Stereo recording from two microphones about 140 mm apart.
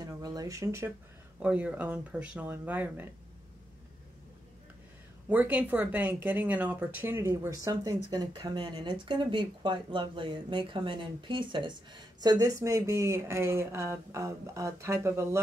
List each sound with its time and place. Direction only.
0.0 s a sound: 25° right (ahead or behind)
1.4 s speech: 10° right (ahead or behind)
5.3 s speech: 10° right (ahead or behind)